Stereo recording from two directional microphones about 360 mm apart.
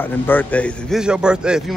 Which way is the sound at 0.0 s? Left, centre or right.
Centre.